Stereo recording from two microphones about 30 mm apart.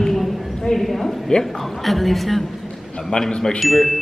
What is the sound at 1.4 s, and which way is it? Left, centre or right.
A woman's voice, centre.